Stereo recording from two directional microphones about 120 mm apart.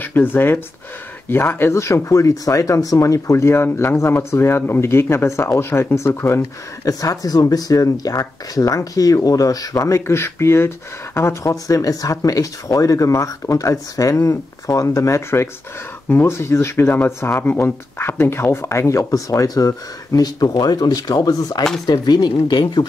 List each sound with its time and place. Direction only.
0.0 s speech: 15° left (ahead or behind); by 22.8 s 35° left (ahead or behind)